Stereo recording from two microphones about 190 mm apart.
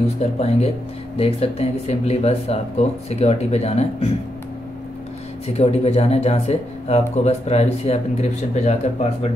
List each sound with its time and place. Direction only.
0.0 s speech: 35° left (ahead or behind)
5.5 s speech: 35° left (ahead or behind)